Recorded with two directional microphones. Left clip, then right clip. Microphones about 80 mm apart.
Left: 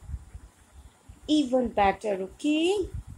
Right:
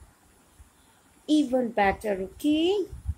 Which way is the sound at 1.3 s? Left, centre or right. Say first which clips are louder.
Even; centre.